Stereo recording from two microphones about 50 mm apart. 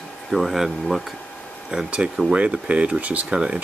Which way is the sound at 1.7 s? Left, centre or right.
Right.